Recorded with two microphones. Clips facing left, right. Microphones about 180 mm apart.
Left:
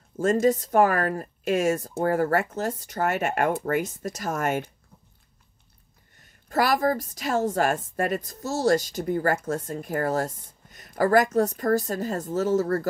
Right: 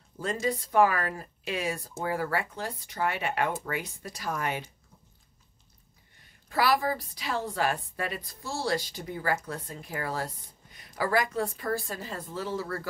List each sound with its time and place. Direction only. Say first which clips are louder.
0.2 s a woman's voice: left 9 dB; 45° left (ahead or behind)
6.1 s a woman's voice: left 5 dB; 45° left (ahead or behind)